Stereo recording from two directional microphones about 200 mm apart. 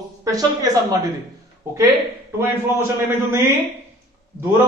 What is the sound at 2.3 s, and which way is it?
A man's voice, 10° right (ahead or behind).